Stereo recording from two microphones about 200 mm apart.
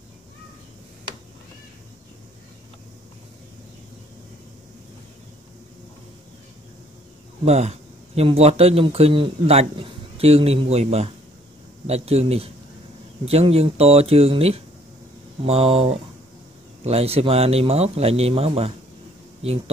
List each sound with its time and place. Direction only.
7.4 s speech: 35° right (ahead or behind)